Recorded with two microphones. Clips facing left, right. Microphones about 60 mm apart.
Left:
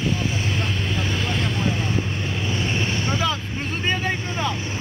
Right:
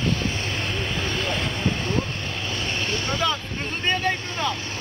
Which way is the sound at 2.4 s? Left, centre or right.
Centre.